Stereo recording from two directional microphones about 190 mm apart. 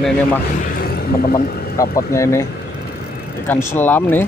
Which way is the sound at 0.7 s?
50° left (ahead or behind).